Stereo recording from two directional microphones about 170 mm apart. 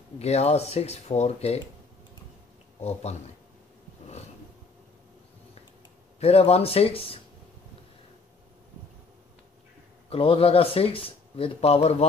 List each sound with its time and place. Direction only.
0.2 s speech: 40° left (ahead or behind)
2.8 s speech: 40° left (ahead or behind)
6.1 s speech: 35° left (ahead or behind)
10.0 s speech: 35° left (ahead or behind)